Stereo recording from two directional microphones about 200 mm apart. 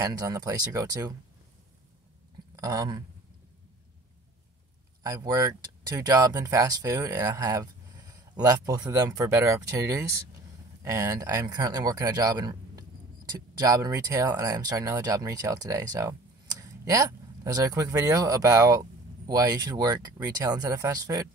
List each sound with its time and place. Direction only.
0.0 s speech: 15° right (ahead or behind)
2.6 s speech: 15° right (ahead or behind)
5.0 s speech: 15° right (ahead or behind)